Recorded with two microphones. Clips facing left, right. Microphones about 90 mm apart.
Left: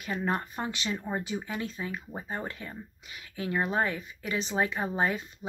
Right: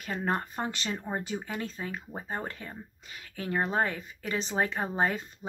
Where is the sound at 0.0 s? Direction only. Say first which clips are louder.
Even; 40° right (ahead or behind).